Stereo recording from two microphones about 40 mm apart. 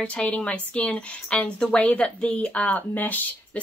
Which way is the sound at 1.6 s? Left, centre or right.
Left.